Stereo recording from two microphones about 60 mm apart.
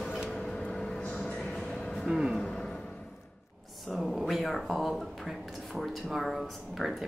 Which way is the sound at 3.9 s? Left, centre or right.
Centre.